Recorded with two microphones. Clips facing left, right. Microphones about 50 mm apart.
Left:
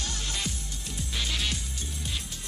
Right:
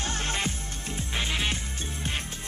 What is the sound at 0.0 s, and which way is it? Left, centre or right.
Music, right.